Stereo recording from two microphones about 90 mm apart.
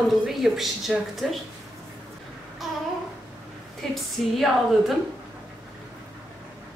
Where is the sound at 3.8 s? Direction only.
5° left (ahead or behind).